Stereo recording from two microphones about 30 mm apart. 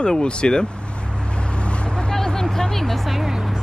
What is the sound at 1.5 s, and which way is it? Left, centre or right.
Vehicle, left.